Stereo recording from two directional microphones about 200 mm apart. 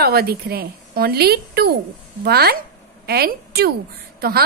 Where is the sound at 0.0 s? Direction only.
50° right (ahead or behind).